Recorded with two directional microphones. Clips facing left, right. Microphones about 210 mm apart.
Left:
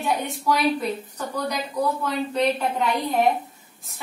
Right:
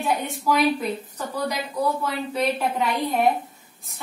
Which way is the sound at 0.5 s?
Centre (ahead or behind).